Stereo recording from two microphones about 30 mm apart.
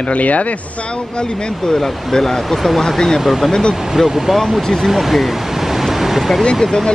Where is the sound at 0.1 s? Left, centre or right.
Left.